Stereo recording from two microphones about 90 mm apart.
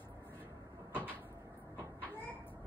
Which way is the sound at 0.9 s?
20° left (ahead or behind).